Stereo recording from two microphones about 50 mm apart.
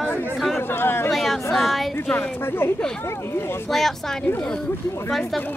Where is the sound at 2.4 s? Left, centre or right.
Left.